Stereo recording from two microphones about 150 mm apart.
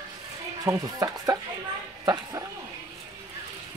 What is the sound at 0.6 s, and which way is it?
Speech, 20° right (ahead or behind).